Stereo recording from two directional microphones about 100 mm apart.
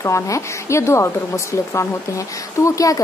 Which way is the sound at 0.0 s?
30° left (ahead or behind).